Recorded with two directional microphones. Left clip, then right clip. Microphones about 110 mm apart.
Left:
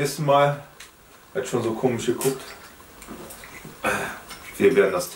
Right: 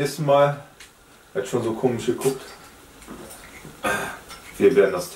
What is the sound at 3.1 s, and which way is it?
Bathtub, 10° right (ahead or behind).